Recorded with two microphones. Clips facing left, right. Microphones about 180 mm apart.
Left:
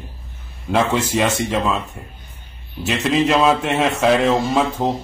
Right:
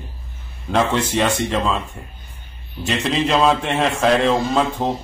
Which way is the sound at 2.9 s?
5° left (ahead or behind).